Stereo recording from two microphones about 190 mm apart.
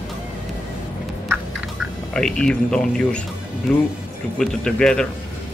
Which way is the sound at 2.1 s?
5° left (ahead or behind).